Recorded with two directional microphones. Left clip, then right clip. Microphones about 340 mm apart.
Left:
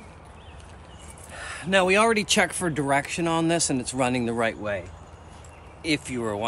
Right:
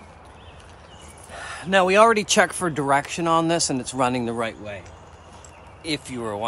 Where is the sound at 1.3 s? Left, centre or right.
Centre.